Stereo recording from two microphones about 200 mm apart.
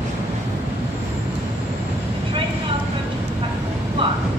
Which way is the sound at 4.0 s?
25° right (ahead or behind).